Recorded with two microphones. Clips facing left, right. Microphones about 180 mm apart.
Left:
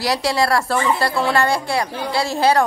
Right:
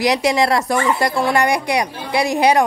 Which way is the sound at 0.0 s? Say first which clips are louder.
Right 3 dB; 20° right (ahead or behind).